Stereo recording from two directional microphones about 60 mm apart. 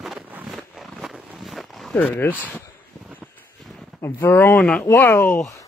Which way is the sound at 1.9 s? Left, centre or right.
Left.